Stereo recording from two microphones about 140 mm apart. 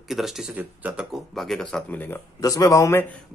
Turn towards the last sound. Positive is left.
turn(degrees=15)  # may be behind; listen again after turning